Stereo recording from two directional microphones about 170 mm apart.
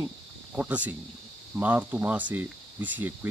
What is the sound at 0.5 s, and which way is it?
Speech, 10° right (ahead or behind).